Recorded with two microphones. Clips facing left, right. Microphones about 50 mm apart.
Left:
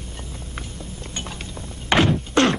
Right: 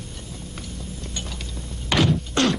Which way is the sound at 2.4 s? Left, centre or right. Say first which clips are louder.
Left 4 dB; left.